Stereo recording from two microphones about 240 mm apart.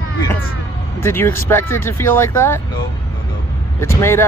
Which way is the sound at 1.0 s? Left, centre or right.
Centre.